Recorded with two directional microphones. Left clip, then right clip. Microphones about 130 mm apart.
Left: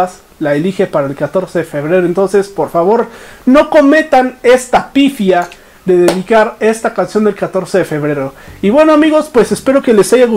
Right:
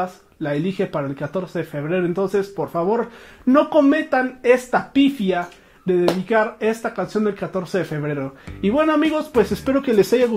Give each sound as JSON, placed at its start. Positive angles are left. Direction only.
{"t": 0.0, "sound": "speech", "side_deg": 40}